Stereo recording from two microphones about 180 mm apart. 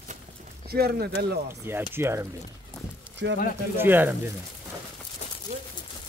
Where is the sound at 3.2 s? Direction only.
90° right.